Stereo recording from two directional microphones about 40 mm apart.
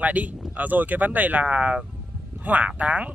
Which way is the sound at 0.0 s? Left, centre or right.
Right.